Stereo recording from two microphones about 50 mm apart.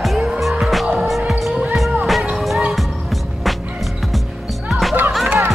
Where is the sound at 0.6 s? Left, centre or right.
Centre.